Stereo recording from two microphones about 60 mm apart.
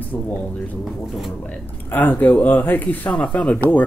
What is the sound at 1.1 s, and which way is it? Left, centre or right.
Speech, centre.